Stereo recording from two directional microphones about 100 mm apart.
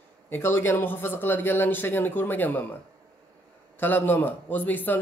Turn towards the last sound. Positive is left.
turn(degrees=20)  # may be behind; listen again after turning